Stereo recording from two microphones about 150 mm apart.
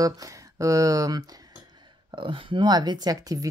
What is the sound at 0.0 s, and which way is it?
Speech, 20° right (ahead or behind).